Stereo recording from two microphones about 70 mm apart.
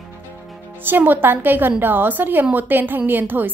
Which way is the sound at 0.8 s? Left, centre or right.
Right.